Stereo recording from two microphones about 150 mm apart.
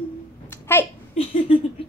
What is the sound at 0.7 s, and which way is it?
Speech, 15° left (ahead or behind).